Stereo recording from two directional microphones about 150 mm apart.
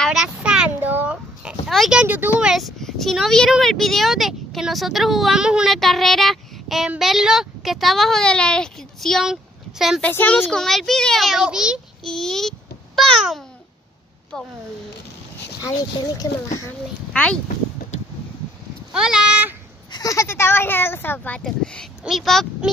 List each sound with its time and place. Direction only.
0.0 s a sound: 5° right (ahead or behind)
2.5 s speech: centre (ahead or behind)
10.0 s a child's voice: 10° left (ahead or behind)
15.6 s speech: 25° left (ahead or behind)
17.1 s speech: 10° left (ahead or behind)
18.9 s speech: 5° right (ahead or behind)
19.9 s speech: 25° left (ahead or behind); by 22.7 s centre (ahead or behind)